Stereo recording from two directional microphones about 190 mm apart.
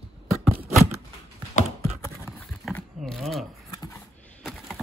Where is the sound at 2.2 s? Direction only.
5° left (ahead or behind).